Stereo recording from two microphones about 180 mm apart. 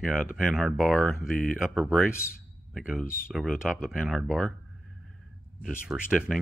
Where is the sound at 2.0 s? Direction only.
15° left (ahead or behind).